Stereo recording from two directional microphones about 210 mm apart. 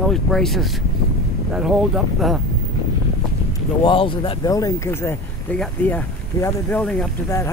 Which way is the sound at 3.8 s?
25° left (ahead or behind).